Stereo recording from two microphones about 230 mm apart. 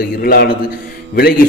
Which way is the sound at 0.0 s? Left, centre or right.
Left.